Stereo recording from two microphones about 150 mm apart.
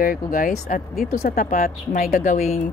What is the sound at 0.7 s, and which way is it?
Speech, 55° left (ahead or behind).